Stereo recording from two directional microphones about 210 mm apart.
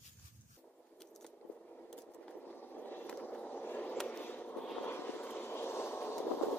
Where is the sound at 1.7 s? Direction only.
5° left (ahead or behind).